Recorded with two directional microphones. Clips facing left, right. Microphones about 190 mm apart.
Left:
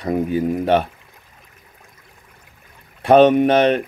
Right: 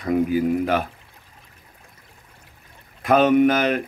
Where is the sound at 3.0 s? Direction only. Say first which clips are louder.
Left 4 dB; 30° left (ahead or behind).